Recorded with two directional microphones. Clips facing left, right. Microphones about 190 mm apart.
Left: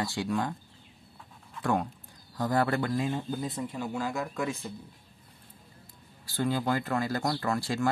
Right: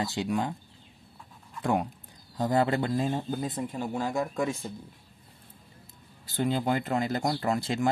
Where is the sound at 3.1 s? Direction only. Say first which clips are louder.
Right 2 dB; 45° right (ahead or behind).